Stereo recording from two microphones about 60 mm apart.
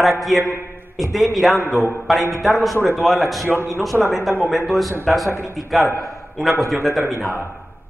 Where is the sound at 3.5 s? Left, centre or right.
Right.